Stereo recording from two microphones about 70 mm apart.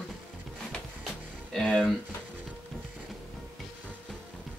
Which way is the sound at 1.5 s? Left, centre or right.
Centre.